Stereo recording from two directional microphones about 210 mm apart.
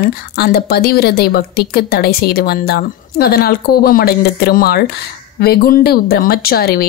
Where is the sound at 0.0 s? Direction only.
45° left (ahead or behind).